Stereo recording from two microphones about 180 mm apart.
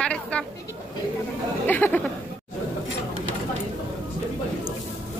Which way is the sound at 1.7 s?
10° left (ahead or behind).